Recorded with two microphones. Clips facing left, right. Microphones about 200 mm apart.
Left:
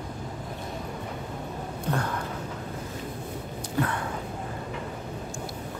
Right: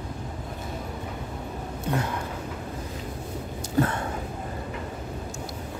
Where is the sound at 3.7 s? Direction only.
25° right (ahead or behind).